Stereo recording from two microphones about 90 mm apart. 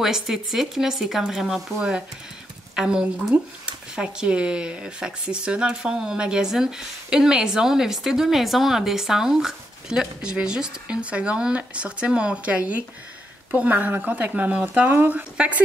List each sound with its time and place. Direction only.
0.0 s speech: 5° right (ahead or behind)